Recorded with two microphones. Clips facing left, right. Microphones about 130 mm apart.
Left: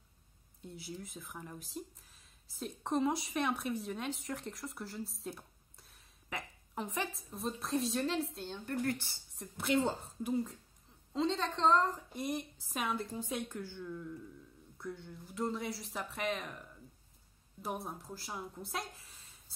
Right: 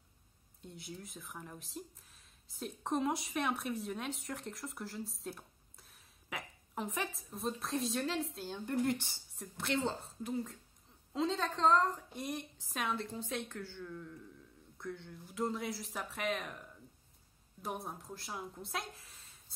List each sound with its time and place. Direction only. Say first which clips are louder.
0.6 s speech: left 2 dB; centre (ahead or behind)
8.6 s speech: right 2 dB; 15° right (ahead or behind)
9.3 s a woman's voice: left 4 dB; centre (ahead or behind)